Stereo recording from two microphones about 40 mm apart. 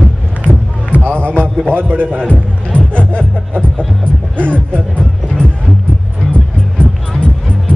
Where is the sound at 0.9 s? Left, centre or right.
Right.